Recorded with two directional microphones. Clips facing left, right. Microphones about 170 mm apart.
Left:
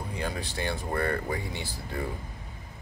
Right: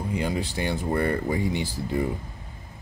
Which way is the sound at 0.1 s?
15° right (ahead or behind).